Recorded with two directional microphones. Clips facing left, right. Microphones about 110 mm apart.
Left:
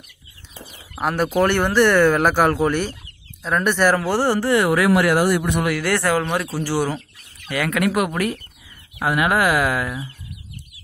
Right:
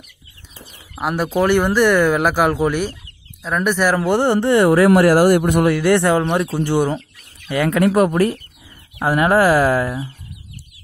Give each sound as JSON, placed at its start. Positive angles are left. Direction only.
{"t": 0.9, "sound": "speech", "side_deg": -5}
{"t": 4.0, "sound": "speech", "side_deg": -20}
{"t": 5.7, "sound": "speech", "side_deg": -20}